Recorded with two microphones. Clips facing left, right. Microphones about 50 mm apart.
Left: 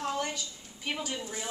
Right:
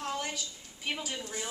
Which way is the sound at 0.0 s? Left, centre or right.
Centre.